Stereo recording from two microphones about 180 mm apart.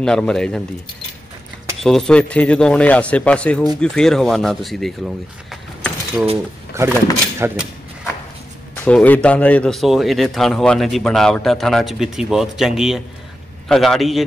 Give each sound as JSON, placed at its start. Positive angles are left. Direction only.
{"t": 0.0, "sound": "speech", "side_deg": 5}
{"t": 1.8, "sound": "speech", "side_deg": 0}
{"t": 6.7, "sound": "speech", "side_deg": -15}
{"t": 7.3, "sound": "a sound", "side_deg": -10}
{"t": 8.8, "sound": "speech", "side_deg": 10}